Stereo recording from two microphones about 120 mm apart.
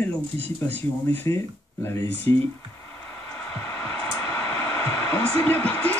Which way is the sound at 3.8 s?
20° left (ahead or behind).